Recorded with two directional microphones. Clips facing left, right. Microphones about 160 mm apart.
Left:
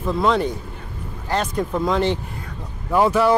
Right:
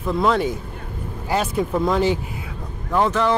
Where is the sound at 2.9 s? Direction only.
10° left (ahead or behind).